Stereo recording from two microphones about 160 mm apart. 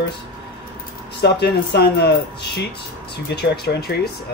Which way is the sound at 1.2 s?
90° left.